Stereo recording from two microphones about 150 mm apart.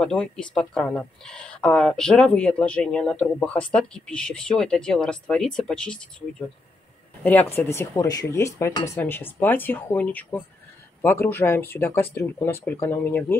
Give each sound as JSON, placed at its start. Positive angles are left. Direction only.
{"t": 0.0, "sound": "speech", "side_deg": 5}
{"t": 7.2, "sound": "speech", "side_deg": 15}